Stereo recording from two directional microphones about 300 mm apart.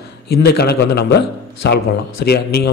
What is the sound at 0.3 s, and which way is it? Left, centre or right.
Speech, left.